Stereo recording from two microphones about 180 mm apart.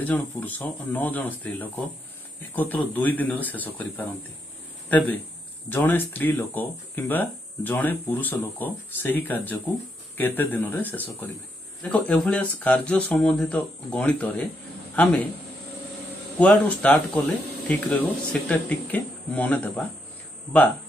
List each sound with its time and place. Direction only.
0.0 s speech: 10° left (ahead or behind)
16.3 s speech: 5° left (ahead or behind)